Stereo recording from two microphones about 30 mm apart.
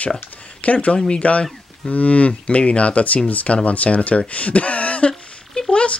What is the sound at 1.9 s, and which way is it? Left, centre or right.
Speech, left.